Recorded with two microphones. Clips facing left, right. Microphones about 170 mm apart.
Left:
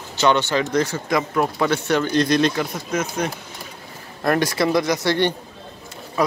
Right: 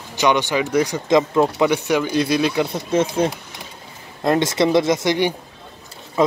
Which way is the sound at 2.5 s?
30° right (ahead or behind).